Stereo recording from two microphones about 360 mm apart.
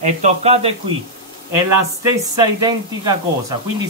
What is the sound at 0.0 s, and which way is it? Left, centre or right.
Speech, centre.